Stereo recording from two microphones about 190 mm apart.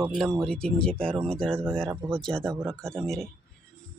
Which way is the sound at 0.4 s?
5° left (ahead or behind).